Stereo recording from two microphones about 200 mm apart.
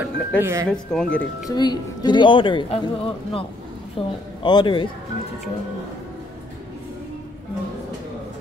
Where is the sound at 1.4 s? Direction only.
20° left (ahead or behind).